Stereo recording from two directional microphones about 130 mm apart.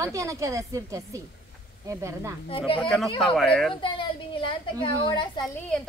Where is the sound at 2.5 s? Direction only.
45° left (ahead or behind).